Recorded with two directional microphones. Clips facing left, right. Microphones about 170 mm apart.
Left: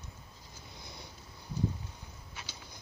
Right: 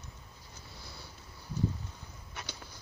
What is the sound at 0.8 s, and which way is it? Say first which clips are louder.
Vehicle: left 2 dB; 15° left (ahead or behind).